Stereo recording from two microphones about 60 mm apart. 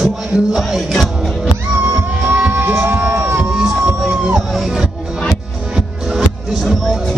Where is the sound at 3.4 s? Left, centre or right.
Centre.